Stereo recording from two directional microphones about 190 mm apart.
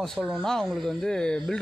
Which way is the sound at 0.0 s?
5° right (ahead or behind).